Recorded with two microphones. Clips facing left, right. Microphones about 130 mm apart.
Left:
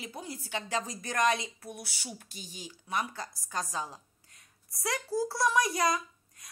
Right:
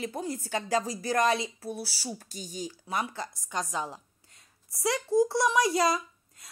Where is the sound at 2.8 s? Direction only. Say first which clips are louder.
Even; 30° right (ahead or behind).